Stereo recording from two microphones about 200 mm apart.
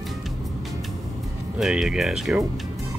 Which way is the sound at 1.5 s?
5° right (ahead or behind).